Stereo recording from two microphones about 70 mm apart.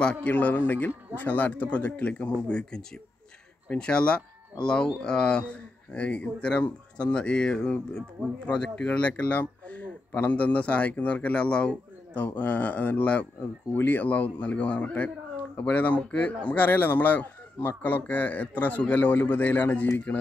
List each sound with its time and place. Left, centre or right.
0.0 s speech: centre